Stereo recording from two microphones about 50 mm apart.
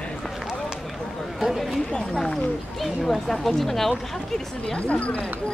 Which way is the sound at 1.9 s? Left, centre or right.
Centre.